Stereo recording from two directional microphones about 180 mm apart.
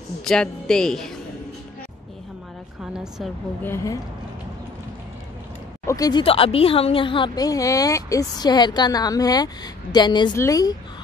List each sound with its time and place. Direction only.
0.2 s a woman's voice: 5° left (ahead or behind)
2.8 s vehicle: 5° right (ahead or behind)
3.6 s speech: 15° left (ahead or behind)
5.9 s speech: 20° left (ahead or behind)